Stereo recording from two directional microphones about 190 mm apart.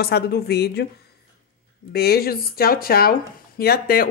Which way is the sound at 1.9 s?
55° left (ahead or behind).